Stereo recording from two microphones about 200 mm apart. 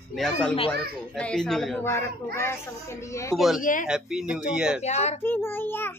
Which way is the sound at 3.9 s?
5° right (ahead or behind).